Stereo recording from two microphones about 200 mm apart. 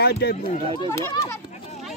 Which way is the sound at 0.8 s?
15° left (ahead or behind).